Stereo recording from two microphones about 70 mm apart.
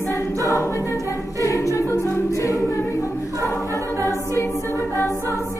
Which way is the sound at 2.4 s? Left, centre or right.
Left.